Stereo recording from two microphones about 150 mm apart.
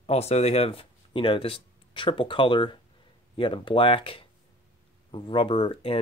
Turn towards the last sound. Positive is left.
turn(degrees=35)  # may be behind; listen again after turning